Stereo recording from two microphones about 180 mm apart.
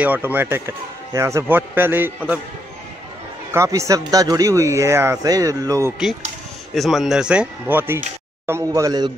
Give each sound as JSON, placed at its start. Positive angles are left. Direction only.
{"t": 0.0, "sound": "speech", "side_deg": -10}
{"t": 3.5, "sound": "speech", "side_deg": -15}
{"t": 6.7, "sound": "speech", "side_deg": 0}